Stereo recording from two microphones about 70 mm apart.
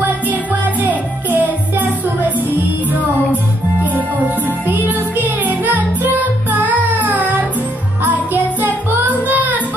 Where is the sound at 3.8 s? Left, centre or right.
Right.